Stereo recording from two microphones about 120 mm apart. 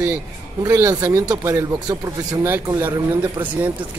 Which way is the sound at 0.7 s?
25° right (ahead or behind).